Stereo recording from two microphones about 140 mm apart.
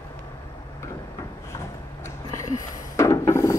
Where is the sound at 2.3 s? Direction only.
20° left (ahead or behind).